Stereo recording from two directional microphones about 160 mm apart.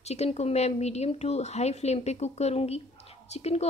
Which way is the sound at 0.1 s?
40° left (ahead or behind).